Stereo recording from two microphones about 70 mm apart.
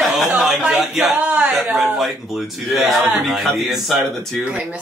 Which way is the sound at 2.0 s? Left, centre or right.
Centre.